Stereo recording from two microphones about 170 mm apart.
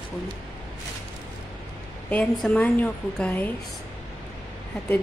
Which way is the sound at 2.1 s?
10° left (ahead or behind).